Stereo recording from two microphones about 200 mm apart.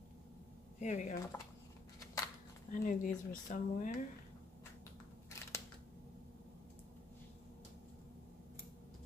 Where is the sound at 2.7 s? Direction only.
40° left (ahead or behind).